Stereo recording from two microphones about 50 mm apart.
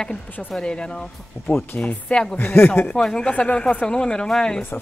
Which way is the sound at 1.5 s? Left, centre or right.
Left.